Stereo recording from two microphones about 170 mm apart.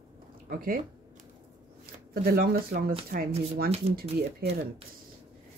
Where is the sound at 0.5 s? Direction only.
60° right (ahead or behind).